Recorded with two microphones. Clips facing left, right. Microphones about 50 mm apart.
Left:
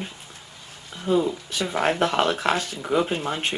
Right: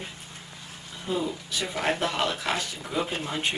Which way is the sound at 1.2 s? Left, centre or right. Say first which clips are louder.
Left 5 dB; left.